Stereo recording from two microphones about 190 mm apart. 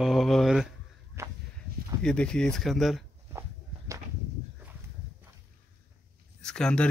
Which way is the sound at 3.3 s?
15° right (ahead or behind).